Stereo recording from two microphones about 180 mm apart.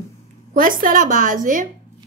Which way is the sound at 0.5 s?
50° right (ahead or behind).